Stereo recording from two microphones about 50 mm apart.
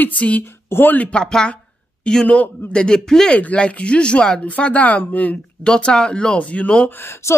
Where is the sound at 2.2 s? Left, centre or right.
Left.